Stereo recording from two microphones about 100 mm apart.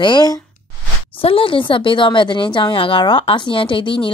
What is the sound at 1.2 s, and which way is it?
A woman's voice, 65° left (ahead or behind).